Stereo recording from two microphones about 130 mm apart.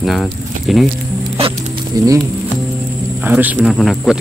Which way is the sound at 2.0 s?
25° right (ahead or behind).